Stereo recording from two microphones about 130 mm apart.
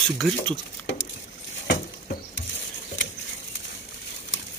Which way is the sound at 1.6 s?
90° left.